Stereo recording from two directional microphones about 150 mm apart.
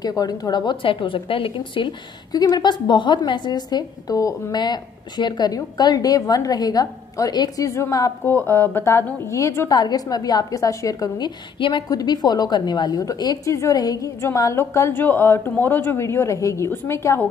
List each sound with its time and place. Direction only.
0.0 s a woman's voice: 25° left (ahead or behind)